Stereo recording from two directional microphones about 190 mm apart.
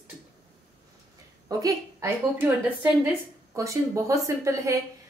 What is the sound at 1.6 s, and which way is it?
Speech, 15° right (ahead or behind).